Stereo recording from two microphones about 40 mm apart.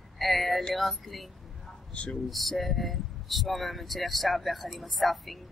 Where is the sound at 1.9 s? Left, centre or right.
Left.